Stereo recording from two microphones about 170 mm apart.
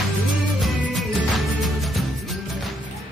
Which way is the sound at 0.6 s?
Centre (ahead or behind).